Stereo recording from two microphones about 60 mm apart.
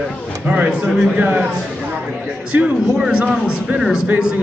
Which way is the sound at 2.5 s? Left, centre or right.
Centre.